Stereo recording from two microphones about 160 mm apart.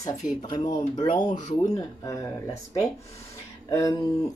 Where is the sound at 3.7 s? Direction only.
20° left (ahead or behind).